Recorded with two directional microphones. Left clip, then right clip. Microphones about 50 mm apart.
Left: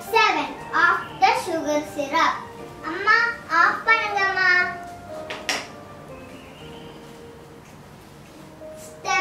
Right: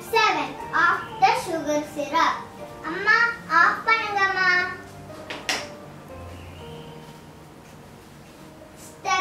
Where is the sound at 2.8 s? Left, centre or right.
Centre.